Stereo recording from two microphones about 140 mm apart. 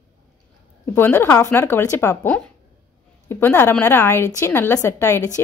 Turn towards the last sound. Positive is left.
turn(degrees=20)  # may be behind; listen again after turning